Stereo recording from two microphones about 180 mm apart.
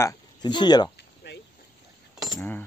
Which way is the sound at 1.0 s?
70° left (ahead or behind).